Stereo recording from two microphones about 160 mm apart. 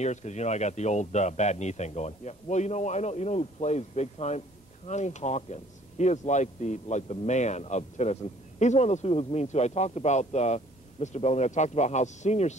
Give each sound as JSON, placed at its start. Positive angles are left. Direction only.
{"t": 0.0, "sound": "speech", "side_deg": 45}